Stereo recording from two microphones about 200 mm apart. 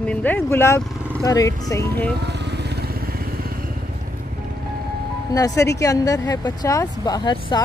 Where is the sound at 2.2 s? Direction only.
60° right (ahead or behind).